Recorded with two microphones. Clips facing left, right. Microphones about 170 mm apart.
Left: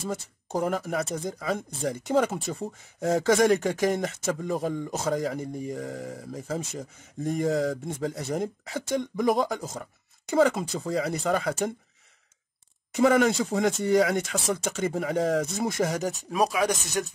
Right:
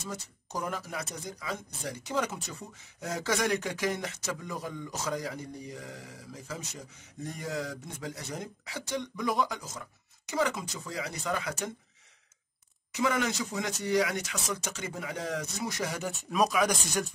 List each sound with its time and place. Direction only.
0.1 s speech: 55° left (ahead or behind)
12.9 s speech: 55° left (ahead or behind); by 17.0 s 25° left (ahead or behind)